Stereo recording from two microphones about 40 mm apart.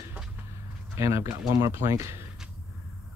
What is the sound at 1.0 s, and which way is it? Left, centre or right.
Speech, right.